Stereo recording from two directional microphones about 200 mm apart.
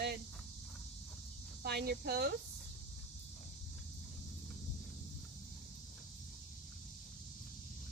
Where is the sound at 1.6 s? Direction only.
50° right (ahead or behind).